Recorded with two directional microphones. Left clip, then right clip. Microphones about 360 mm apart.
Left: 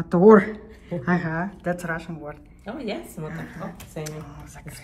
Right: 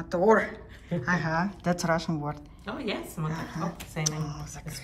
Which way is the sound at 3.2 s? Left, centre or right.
Centre.